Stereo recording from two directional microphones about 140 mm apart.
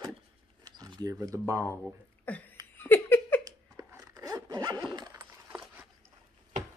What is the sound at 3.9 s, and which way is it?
Zipper, 25° right (ahead or behind).